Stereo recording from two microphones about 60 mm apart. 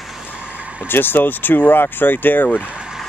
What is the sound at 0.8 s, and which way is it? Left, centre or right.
Speech, left.